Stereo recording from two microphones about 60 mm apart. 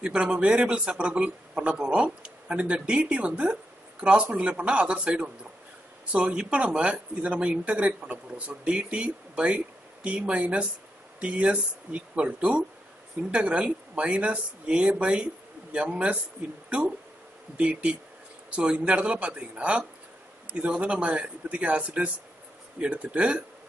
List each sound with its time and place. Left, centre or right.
0.0 s a man's voice: centre